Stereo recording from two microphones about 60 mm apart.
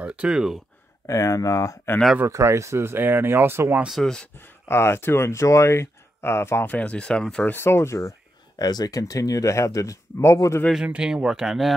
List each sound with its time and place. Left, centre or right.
0.0 s speech: right
0.3 s speech: centre
1.0 s speech: left
2.2 s speech: right
4.0 s speech: centre
4.4 s speech: left
6.6 s speech: left
7.4 s speech: left
8.5 s speech: left
10.9 s speech: centre